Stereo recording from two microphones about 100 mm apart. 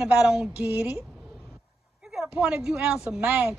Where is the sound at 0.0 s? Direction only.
10° right (ahead or behind).